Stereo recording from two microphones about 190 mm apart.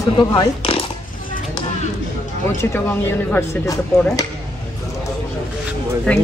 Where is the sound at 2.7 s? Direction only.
10° left (ahead or behind).